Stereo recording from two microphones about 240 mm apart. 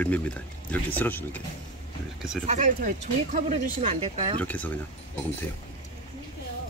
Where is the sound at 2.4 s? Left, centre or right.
Right.